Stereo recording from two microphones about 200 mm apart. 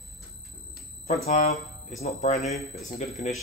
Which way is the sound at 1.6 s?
Centre (ahead or behind).